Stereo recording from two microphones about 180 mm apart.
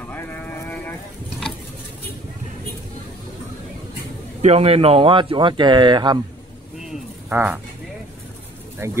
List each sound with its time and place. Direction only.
0.0 s sheep: 10° left (ahead or behind)
4.4 s speech: 35° right (ahead or behind)
6.8 s a sound: 5° right (ahead or behind)
8.8 s speech: 15° right (ahead or behind)